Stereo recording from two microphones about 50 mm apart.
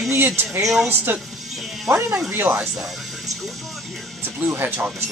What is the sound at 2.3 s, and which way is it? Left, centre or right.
Speech, right.